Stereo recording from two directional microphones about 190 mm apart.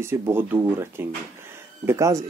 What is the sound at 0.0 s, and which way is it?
Speech, 10° right (ahead or behind).